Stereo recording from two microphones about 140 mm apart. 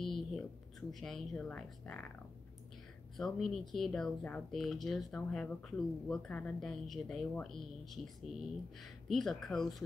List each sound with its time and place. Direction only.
0.0 s speech: centre (ahead or behind)
3.2 s speech: centre (ahead or behind)